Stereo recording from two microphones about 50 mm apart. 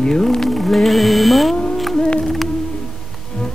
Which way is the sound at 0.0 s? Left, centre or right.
Centre.